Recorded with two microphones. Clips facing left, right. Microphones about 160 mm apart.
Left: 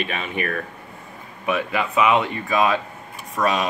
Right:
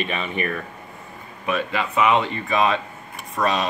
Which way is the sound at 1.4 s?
15° left (ahead or behind).